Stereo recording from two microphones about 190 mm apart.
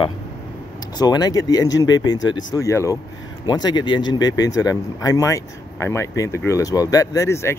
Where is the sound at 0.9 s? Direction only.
20° left (ahead or behind).